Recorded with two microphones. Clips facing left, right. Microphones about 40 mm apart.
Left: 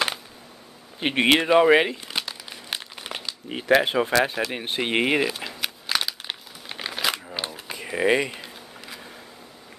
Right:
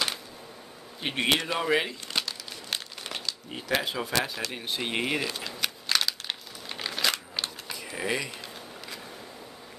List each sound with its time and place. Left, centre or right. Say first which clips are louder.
0.9 s speech: left 7 dB; left
2.0 s crumpling: left 1 dB; centre
3.4 s speech: left 10 dB; left
5.3 s crumpling: left 2 dB; centre
7.3 s a sound: left 3 dB; centre
7.7 s speech: left 10 dB; left
8.4 s a sound: left 1 dB; centre